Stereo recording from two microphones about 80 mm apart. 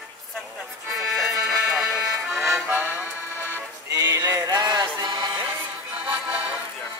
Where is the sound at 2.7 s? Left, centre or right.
Right.